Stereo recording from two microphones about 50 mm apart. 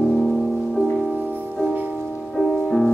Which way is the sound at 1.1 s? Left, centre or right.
Right.